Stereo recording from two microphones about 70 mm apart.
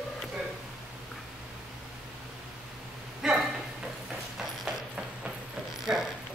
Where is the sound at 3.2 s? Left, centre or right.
Centre.